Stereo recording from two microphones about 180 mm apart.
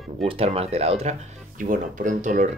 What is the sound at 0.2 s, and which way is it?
Speech, 30° right (ahead or behind).